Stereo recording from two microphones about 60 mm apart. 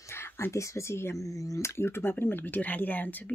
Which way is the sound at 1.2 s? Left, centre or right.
Left.